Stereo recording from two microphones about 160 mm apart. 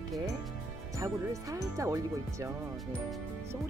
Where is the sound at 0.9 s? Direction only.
20° right (ahead or behind).